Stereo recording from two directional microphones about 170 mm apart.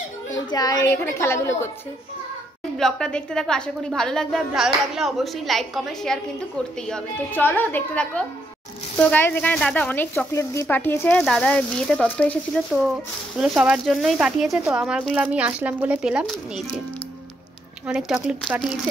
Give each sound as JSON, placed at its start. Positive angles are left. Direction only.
{"t": 0.5, "sound": "speech", "side_deg": 20}
{"t": 2.8, "sound": "a woman's voice", "side_deg": 5}
{"t": 17.8, "sound": "a woman's voice", "side_deg": -5}